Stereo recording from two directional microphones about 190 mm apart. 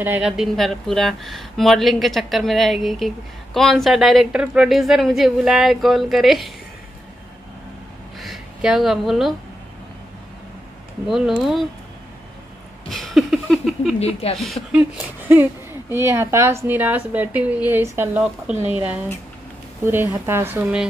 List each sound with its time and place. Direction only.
0.0 s a woman's voice: 5° right (ahead or behind)
8.2 s a sound: centre (ahead or behind)
11.1 s a woman's voice: centre (ahead or behind)
12.9 s a sound: centre (ahead or behind)
13.9 s speech: 30° left (ahead or behind)
14.4 s a woman's voice: centre (ahead or behind)
19.8 s a woman's voice: 10° right (ahead or behind)